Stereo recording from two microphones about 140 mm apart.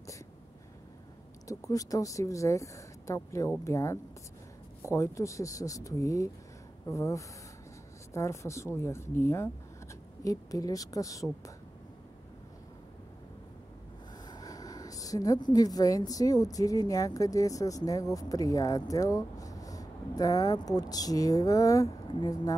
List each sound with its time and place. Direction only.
1.5 s speech: 25° left (ahead or behind)
14.2 s a woman's voice: 30° left (ahead or behind)